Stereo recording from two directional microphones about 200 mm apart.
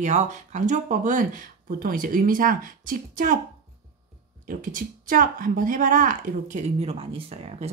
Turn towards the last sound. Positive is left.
turn(degrees=-30)  # may be behind; listen again after turning